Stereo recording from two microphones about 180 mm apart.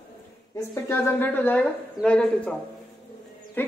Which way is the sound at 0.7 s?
10° left (ahead or behind).